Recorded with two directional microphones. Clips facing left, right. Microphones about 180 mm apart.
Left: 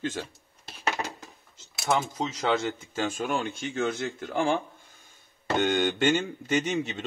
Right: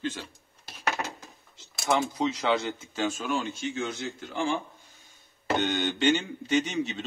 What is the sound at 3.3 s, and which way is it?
A man's voice, 55° left (ahead or behind).